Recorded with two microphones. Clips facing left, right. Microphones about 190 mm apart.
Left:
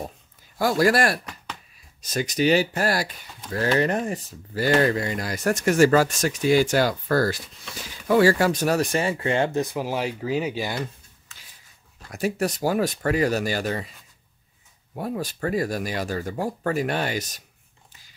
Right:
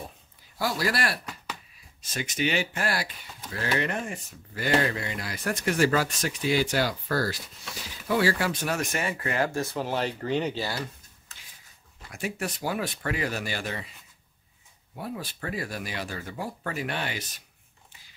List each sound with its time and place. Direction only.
0.6 s speech: 50° left (ahead or behind); by 10.8 s 15° left (ahead or behind)
12.1 s speech: 40° left (ahead or behind)
15.0 s speech: 45° left (ahead or behind)